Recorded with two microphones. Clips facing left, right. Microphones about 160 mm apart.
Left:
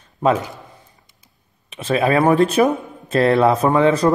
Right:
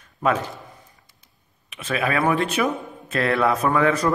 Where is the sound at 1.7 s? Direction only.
30° left (ahead or behind).